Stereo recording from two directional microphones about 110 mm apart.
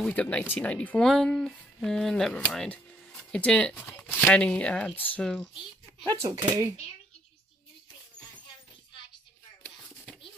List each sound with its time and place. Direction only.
0.0 s speech: 10° left (ahead or behind)
6.0 s speech: 30° right (ahead or behind)